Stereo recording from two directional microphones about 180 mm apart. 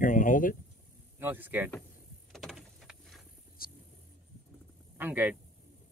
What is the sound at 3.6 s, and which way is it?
Vehicle, 55° left (ahead or behind).